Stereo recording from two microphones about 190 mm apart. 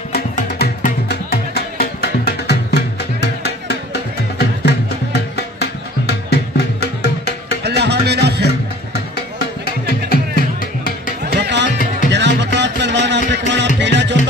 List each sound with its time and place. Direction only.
0.1 s music: 50° left (ahead or behind)
7.6 s music: 60° right (ahead or behind)
10.0 s music: 50° left (ahead or behind)
11.2 s music: 65° right (ahead or behind)